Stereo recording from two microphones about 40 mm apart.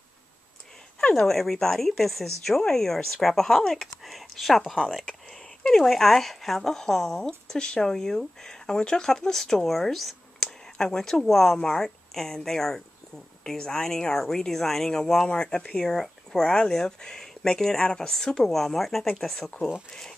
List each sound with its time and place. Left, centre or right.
1.1 s speech: centre
4.0 s speech: centre; by 15.8 s left
15.8 s speech: centre